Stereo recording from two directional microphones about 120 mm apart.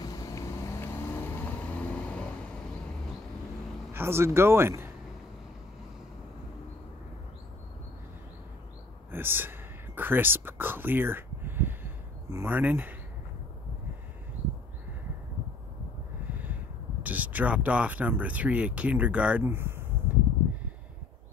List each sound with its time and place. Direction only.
0.0 s vehicle: 30° left (ahead or behind); by 2.3 s 10° left (ahead or behind)
3.9 s speech: 20° right (ahead or behind)
9.1 s whispering: 20° right (ahead or behind)
16.3 s a sound: 15° right (ahead or behind)
17.0 s speech: 15° right (ahead or behind)